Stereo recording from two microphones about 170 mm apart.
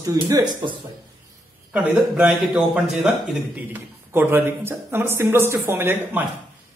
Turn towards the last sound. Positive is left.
turn(degrees=-10)  # may be behind; listen again after turning